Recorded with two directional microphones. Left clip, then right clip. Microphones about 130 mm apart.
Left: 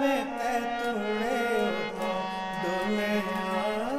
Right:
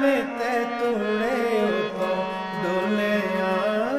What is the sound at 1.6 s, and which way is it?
Music, 40° left (ahead or behind).